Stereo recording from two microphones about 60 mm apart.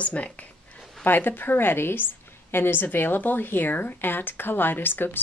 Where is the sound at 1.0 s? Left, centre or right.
Left.